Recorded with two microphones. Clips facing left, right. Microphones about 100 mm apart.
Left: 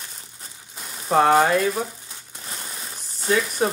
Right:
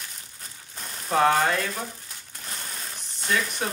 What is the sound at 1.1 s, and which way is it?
Speech, 30° left (ahead or behind).